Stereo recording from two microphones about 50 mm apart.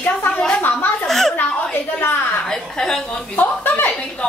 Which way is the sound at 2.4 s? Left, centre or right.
Centre.